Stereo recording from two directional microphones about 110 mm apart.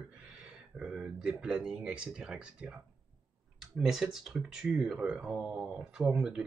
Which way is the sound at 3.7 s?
5° right (ahead or behind).